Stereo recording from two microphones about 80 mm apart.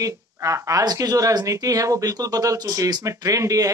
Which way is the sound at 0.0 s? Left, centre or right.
Right.